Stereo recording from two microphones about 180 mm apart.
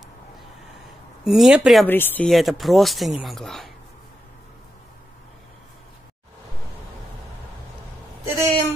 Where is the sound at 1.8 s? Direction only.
10° left (ahead or behind).